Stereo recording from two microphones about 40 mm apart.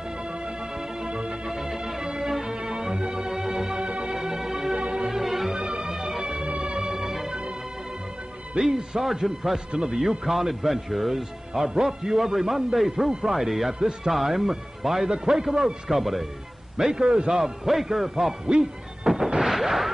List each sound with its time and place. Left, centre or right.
0.2 s music: right
5.2 s music: centre
5.5 s music: centre
7.2 s music: right
8.5 s a man's voice: centre
15.0 s a man's voice: centre
16.7 s a man's voice: centre